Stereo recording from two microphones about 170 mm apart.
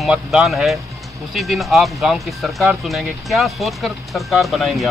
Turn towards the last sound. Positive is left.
turn(degrees=0)  # may be behind; listen again after turning